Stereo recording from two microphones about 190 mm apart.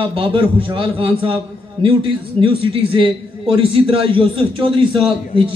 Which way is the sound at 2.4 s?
30° right (ahead or behind).